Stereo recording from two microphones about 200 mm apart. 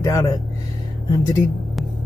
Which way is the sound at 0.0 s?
15° left (ahead or behind).